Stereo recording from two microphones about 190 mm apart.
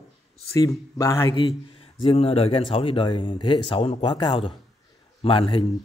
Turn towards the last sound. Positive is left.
turn(degrees=30)  # may be behind; listen again after turning